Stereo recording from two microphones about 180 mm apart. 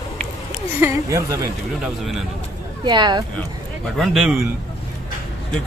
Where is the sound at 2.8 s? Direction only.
25° right (ahead or behind).